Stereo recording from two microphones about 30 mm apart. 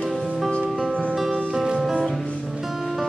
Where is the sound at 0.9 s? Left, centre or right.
Right.